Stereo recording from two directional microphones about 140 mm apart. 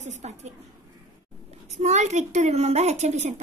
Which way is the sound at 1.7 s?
55° right (ahead or behind).